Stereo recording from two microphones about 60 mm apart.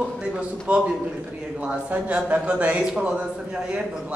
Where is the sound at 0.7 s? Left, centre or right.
Right.